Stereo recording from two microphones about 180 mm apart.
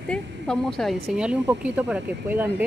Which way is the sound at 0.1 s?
5° left (ahead or behind).